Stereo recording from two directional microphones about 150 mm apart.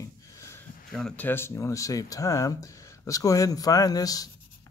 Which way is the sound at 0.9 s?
5° left (ahead or behind).